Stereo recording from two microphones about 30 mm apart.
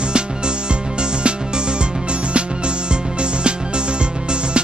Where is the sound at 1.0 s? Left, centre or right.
Right.